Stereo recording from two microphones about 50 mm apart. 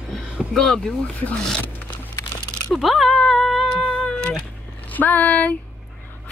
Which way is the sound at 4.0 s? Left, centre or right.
Centre.